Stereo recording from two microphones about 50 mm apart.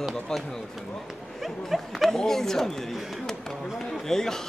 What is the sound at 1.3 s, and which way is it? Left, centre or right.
Speech, centre.